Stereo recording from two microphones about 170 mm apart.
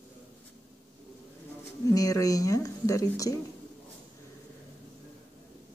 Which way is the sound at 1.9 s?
20° left (ahead or behind).